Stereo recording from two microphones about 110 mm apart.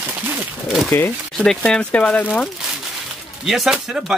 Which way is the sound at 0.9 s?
20° left (ahead or behind).